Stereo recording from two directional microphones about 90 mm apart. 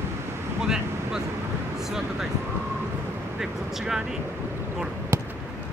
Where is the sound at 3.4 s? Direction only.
5° right (ahead or behind).